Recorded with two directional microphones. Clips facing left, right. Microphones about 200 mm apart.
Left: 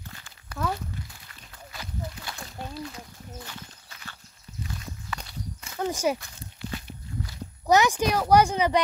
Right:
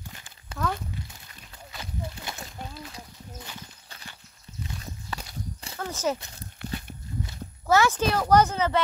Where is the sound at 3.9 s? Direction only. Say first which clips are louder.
Right 1 dB; 30° right (ahead or behind).